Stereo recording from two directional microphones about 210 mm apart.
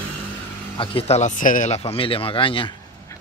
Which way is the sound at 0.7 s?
30° left (ahead or behind).